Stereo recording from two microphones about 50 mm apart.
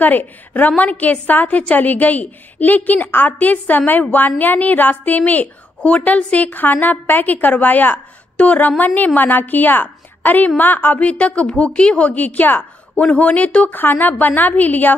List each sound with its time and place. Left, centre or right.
0.0 s a woman's voice: left
13.7 s a woman's voice: left